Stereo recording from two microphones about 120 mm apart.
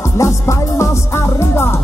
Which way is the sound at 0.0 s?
25° left (ahead or behind).